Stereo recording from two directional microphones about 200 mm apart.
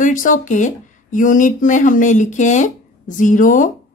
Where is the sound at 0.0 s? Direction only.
40° left (ahead or behind).